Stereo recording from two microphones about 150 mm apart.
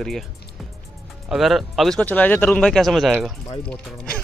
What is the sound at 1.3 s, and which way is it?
Speech, centre (ahead or behind).